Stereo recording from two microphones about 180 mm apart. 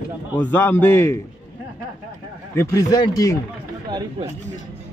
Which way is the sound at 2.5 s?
20° left (ahead or behind).